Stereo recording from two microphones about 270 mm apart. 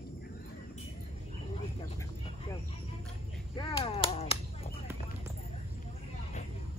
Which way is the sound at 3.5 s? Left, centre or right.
Centre.